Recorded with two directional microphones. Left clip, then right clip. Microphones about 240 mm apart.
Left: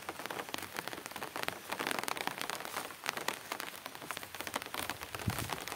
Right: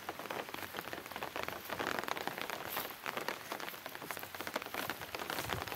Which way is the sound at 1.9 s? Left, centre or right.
Left.